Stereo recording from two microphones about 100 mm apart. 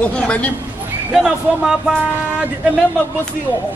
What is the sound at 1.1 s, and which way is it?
Speech, 5° right (ahead or behind).